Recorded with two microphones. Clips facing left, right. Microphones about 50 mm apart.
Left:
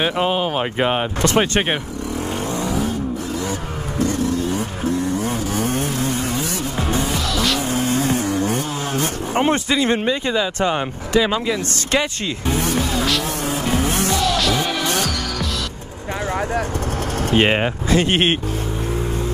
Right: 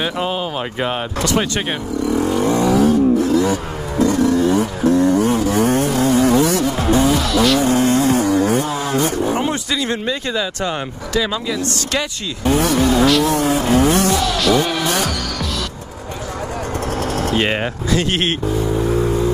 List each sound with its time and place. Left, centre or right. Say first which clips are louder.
0.0 s speech: left 2 dB; left
1.2 s speech: left 1 dB; left
2.4 s vehicle: right 9 dB; right
7.2 s vehicle: right 5 dB; centre
7.6 s chainsaw: right 5 dB; right
9.3 s speech: left 1 dB; left
9.7 s speech: left 3 dB; left
10.0 s speech: left 1 dB; centre
12.4 s vehicle: right 7 dB; right
14.4 s music: right 4 dB; centre
17.3 s speech: left 5 dB; left